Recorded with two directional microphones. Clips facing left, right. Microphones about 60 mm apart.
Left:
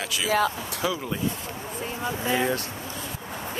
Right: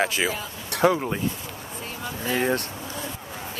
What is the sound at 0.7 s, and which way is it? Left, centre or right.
Speech, right.